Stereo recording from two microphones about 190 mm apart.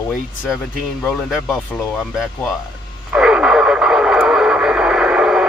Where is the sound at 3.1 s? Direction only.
5° right (ahead or behind).